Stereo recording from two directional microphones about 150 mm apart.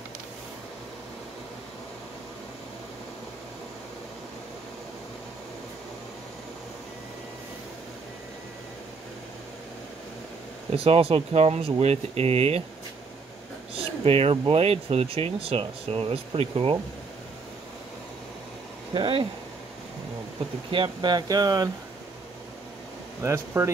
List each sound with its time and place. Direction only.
10.7 s speech: 40° right (ahead or behind)
13.7 s a sound: 40° right (ahead or behind)
14.5 s speech: 40° right (ahead or behind)
18.9 s speech: 35° right (ahead or behind)
20.7 s speech: 30° right (ahead or behind)
23.2 s speech: 20° right (ahead or behind)